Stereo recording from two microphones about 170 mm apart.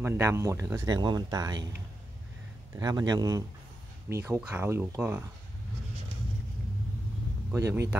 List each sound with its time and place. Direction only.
0.0 s speech: 15° right (ahead or behind)
2.8 s speech: 25° right (ahead or behind)
7.5 s speech: 15° right (ahead or behind)